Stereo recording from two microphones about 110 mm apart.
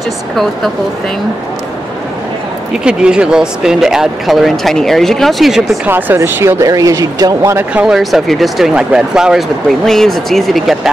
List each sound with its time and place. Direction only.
2.8 s speech: 10° right (ahead or behind)
5.9 s speech: 20° right (ahead or behind)
7.5 s speech: 10° right (ahead or behind)